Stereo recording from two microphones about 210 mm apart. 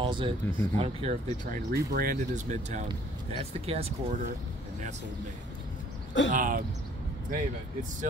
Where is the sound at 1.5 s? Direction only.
50° right (ahead or behind); by 4.2 s 30° right (ahead or behind).